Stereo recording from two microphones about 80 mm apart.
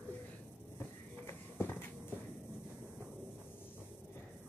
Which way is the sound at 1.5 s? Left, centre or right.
Left.